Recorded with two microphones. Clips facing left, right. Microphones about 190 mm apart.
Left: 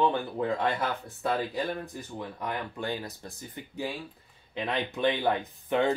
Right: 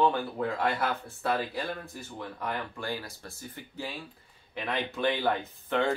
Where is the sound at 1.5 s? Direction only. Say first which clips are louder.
Left 3 dB; 15° left (ahead or behind).